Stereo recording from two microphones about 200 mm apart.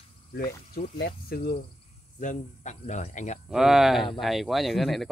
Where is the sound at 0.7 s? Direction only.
50° left (ahead or behind).